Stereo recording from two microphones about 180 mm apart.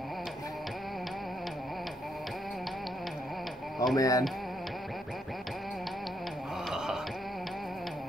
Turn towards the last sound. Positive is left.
turn(degrees=-5)  # may be behind; listen again after turning